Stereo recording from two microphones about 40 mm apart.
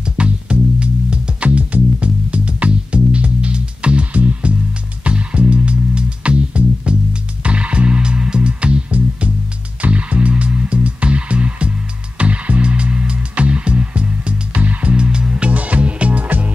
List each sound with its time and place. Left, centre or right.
0.2 s music: right
15.5 s music: right